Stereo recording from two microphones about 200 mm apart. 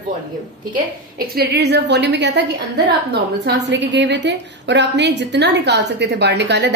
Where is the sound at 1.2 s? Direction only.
55° right (ahead or behind).